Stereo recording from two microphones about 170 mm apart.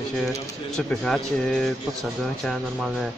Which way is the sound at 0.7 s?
5° left (ahead or behind).